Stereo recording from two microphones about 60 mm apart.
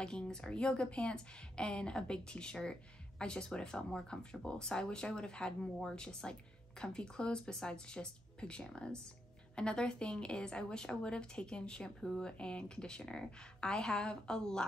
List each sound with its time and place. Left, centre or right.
0.0 s speech: centre